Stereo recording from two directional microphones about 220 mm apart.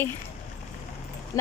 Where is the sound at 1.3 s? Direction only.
15° left (ahead or behind).